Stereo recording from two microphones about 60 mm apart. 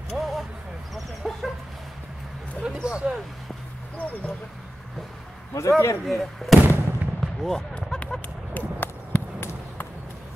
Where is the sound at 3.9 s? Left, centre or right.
Left.